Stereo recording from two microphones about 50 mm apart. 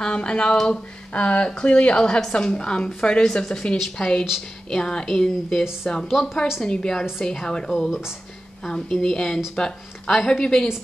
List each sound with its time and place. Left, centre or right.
0.0 s speech: centre
6.0 s speech: centre
6.6 s speech: centre
7.7 s speech: centre
8.6 s speech: centre